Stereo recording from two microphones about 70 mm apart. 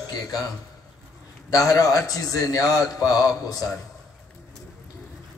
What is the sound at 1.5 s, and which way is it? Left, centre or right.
A man's voice, left.